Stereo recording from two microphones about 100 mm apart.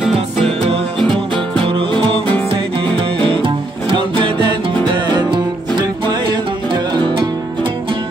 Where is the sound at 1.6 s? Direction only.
60° right (ahead or behind).